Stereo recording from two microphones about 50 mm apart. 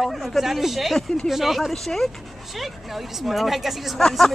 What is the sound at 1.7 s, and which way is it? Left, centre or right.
Speech, centre.